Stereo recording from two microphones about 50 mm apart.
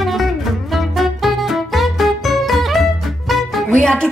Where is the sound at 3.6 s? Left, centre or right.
Centre.